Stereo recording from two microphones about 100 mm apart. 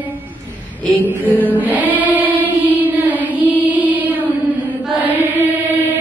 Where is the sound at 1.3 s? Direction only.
15° right (ahead or behind).